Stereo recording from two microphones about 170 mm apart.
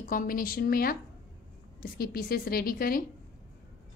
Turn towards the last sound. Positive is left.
turn(degrees=60)  # may be behind; listen again after turning